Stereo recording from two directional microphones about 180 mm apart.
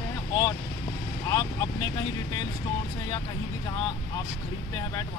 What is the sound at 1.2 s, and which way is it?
Speech, 20° left (ahead or behind).